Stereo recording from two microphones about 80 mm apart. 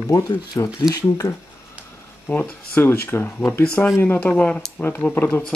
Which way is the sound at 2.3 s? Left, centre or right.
Centre.